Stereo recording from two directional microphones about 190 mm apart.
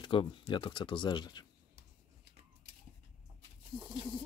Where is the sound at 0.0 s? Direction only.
25° left (ahead or behind).